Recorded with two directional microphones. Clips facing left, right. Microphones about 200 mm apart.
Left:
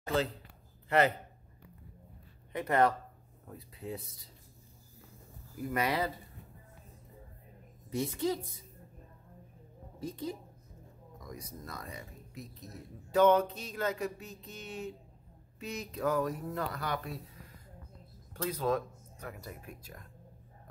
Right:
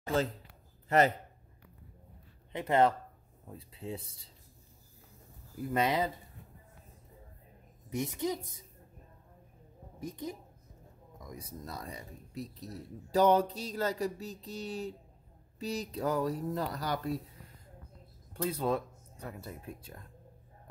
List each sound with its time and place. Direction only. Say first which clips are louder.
0.8 s a man's voice: right 1 dB; 40° right (ahead or behind)
2.5 s speech: right 1 dB; 25° right (ahead or behind)
5.7 s speech: right 2 dB; 20° right (ahead or behind)
7.9 s a woman's voice: left 1 dB; 15° right (ahead or behind)
9.9 s a woman's voice: left 1 dB; 15° right (ahead or behind)
11.2 s speech: right 1 dB; 25° right (ahead or behind)
18.5 s speech: left 1 dB; 30° right (ahead or behind)